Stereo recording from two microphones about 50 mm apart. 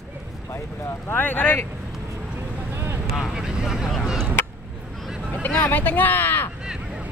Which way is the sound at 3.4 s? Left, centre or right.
Centre.